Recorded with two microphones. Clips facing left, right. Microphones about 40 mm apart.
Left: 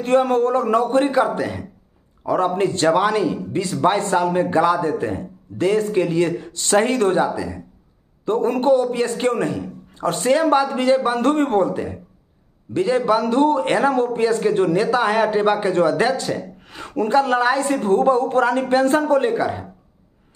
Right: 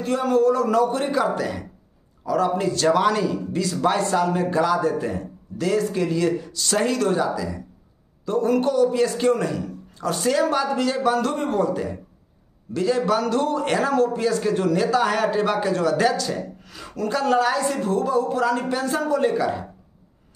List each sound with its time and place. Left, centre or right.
0.0 s a man's voice: left
1.3 s speech: centre
2.2 s a man's voice: left
2.9 s a man's voice: left
11.6 s a man's voice: centre; by 19.3 s left
19.3 s speech: left